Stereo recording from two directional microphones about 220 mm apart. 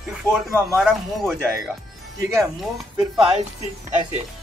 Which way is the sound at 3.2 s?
25° right (ahead or behind).